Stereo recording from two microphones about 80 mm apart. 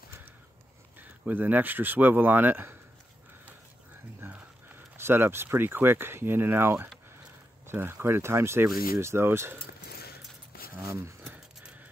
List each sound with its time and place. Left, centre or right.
1.2 s speech: right
4.2 s speech: right
10.7 s a sound: right